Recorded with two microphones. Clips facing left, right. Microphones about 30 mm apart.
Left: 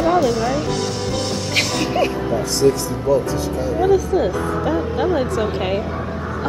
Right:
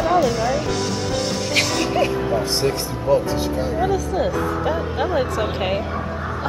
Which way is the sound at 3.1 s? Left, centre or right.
Right.